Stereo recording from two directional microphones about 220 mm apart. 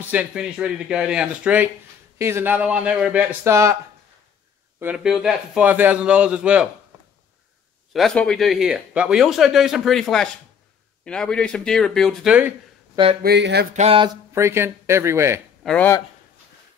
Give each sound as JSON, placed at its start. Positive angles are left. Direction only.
{"t": 0.1, "sound": "speech", "side_deg": -5}
{"t": 4.7, "sound": "speech", "side_deg": -5}
{"t": 7.9, "sound": "speech", "side_deg": 0}
{"t": 12.9, "sound": "speech", "side_deg": -25}
{"t": 13.2, "sound": "speech", "side_deg": -50}
{"t": 13.7, "sound": "speech", "side_deg": -25}
{"t": 15.6, "sound": "speech", "side_deg": 5}